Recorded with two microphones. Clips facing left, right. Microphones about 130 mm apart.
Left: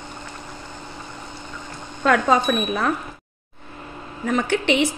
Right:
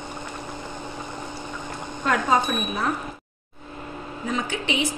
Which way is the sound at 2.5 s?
90° left.